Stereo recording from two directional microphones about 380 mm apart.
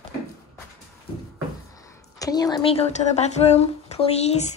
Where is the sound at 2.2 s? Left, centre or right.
Centre.